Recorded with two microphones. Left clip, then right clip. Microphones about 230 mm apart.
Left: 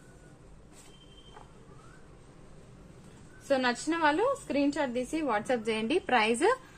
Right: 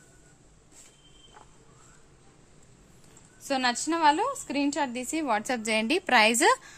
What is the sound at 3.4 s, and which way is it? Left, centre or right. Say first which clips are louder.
A woman's voice: right 1 dB; right.